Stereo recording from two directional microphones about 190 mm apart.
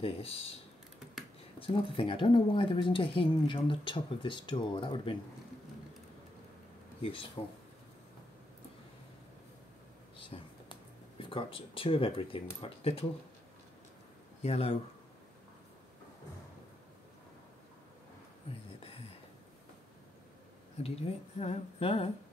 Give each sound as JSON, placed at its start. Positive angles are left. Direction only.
{"t": 0.0, "sound": "a woman's voice", "side_deg": 30}
{"t": 1.6, "sound": "speech", "side_deg": 30}
{"t": 7.0, "sound": "speech", "side_deg": 30}
{"t": 10.2, "sound": "speech", "side_deg": 25}
{"t": 14.4, "sound": "a woman's voice", "side_deg": 30}
{"t": 20.7, "sound": "a woman's voice", "side_deg": 30}